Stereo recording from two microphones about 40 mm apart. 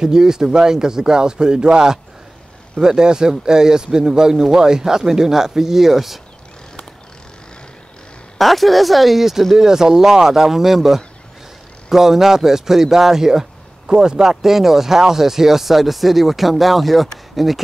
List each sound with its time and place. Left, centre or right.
0.0 s speech: centre
8.4 s speech: centre